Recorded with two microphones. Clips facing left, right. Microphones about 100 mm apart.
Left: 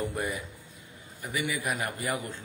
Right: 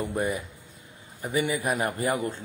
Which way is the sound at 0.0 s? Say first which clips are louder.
Right 4 dB; 25° right (ahead or behind).